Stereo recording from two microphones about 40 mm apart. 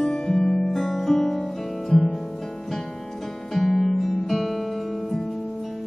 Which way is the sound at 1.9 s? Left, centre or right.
Centre.